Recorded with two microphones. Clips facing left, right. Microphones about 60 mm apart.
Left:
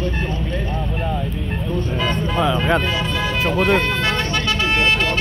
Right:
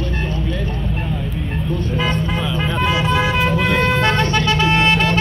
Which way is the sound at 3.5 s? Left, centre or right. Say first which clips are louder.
Left 1 dB; left.